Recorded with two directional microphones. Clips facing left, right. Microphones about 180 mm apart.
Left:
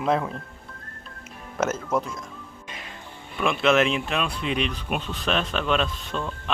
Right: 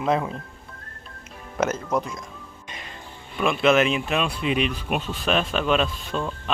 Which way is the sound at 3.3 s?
Centre (ahead or behind).